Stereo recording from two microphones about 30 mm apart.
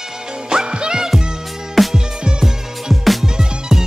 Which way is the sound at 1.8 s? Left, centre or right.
Centre.